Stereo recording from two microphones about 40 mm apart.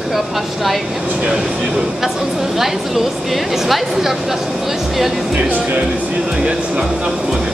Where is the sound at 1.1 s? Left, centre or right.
Right.